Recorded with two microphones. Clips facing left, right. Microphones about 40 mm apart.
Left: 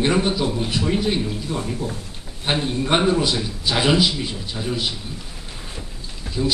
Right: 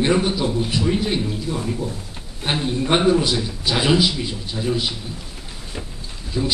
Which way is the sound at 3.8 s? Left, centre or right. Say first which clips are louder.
Even; left.